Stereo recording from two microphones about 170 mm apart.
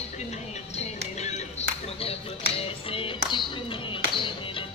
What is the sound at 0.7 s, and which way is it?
Music, 40° left (ahead or behind).